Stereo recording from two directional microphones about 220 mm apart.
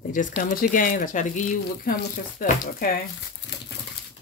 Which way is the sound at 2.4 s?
40° left (ahead or behind).